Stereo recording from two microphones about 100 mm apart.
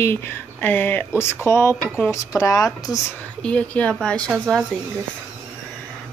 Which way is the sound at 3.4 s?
10° left (ahead or behind).